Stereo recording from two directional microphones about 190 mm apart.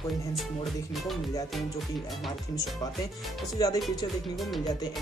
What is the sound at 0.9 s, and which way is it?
Speech, centre (ahead or behind).